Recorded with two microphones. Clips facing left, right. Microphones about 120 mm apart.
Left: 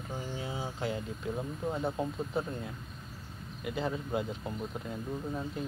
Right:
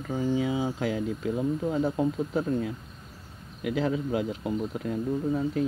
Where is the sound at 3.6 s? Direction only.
85° right.